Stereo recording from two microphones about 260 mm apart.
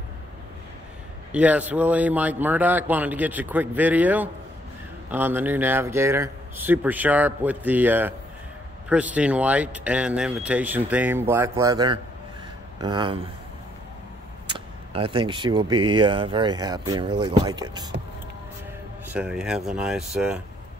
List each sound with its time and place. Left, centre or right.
1.3 s speech: centre
14.5 s speech: centre
19.1 s speech: centre